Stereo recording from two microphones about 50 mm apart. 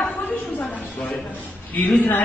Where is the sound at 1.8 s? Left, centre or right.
Left.